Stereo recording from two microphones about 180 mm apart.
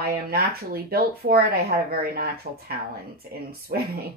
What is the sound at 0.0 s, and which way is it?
Speech, 60° right (ahead or behind).